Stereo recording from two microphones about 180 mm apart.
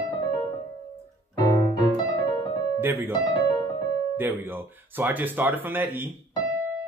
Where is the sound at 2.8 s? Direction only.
10° right (ahead or behind).